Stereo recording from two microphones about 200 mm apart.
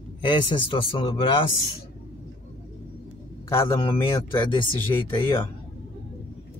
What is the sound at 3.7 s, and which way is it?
Speech, 15° left (ahead or behind).